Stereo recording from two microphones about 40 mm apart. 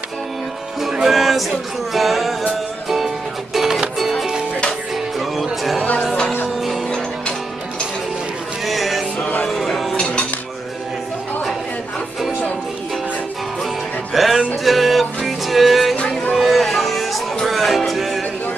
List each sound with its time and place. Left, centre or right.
1.0 s music: centre
3.5 s music: centre
8.6 s music: centre
9.5 s a sound: centre
14.1 s music: centre
16.0 s music: left
16.3 s music: centre